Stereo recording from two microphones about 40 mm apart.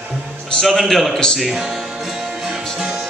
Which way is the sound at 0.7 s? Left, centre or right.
Centre.